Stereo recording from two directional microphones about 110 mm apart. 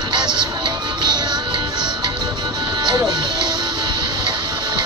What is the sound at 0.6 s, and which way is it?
Music, 40° right (ahead or behind).